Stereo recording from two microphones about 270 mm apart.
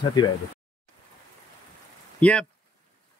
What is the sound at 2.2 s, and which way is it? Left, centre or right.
Speech, centre.